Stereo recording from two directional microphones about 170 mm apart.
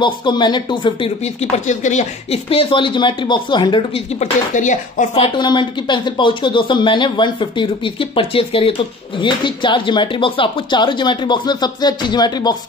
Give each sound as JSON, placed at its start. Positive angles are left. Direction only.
{"t": 0.0, "sound": "speech", "side_deg": 30}
{"t": 1.2, "sound": "speech", "side_deg": 45}
{"t": 4.2, "sound": "speech", "side_deg": 45}